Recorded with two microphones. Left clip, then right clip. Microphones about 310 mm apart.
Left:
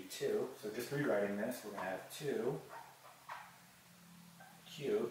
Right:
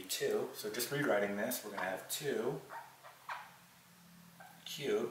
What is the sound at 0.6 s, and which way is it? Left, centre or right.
Speech, centre.